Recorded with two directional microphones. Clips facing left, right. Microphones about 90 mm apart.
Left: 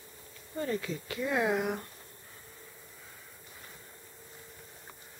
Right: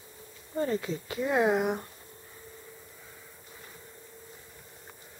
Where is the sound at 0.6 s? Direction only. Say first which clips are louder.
Right 4 dB; 25° right (ahead or behind).